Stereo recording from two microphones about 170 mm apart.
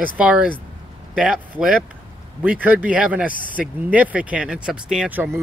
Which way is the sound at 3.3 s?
55° left (ahead or behind).